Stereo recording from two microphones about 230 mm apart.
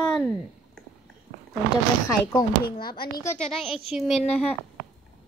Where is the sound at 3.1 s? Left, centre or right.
Centre.